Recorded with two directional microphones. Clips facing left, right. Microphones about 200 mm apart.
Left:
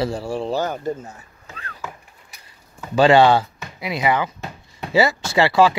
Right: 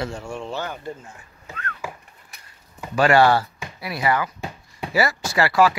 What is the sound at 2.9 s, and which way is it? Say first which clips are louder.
Speech: left 3 dB; 25° left (ahead or behind).